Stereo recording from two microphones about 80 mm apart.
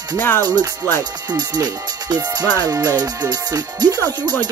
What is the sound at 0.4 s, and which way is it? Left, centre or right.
Speech, right.